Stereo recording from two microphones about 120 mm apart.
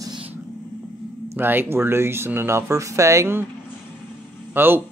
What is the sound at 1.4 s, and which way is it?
Speech, 15° right (ahead or behind).